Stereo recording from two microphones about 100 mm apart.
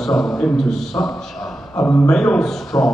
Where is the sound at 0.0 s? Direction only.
5° left (ahead or behind).